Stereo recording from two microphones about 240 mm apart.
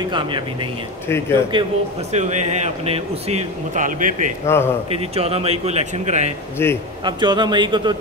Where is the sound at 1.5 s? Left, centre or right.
Right.